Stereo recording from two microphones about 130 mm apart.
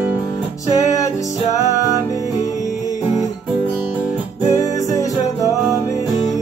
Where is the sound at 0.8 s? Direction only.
25° left (ahead or behind).